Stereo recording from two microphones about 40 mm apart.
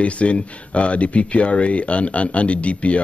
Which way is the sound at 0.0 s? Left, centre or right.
Left.